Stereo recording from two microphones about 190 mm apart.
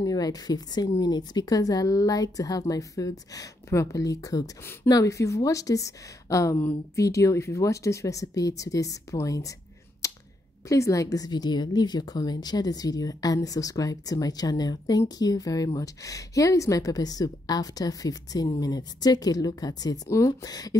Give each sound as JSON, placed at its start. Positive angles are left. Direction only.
{"t": 0.0, "sound": "speech", "side_deg": 20}
{"t": 10.0, "sound": "a sound", "side_deg": 15}
{"t": 10.7, "sound": "speech", "side_deg": 15}